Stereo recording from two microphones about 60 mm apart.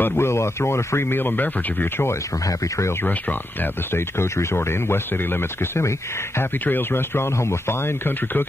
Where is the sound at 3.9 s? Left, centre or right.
Left.